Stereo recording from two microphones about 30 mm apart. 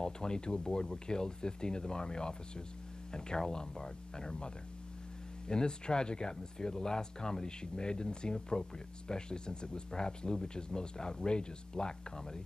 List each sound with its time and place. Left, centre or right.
0.0 s speech: left
5.5 s speech: left